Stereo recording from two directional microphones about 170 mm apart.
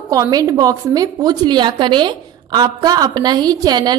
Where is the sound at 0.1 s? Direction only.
20° right (ahead or behind).